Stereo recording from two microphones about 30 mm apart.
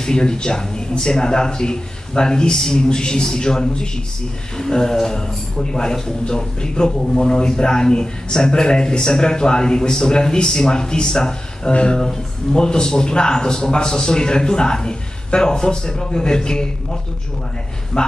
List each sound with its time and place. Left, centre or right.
0.0 s a man's voice: left
4.6 s a sound: centre
5.0 s a man's voice: left
17.9 s a man's voice: left